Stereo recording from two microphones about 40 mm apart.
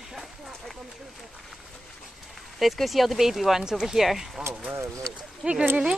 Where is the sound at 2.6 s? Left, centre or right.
Centre.